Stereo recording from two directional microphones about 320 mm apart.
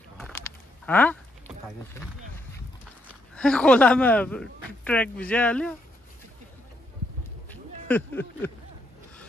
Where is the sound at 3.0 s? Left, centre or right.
Centre.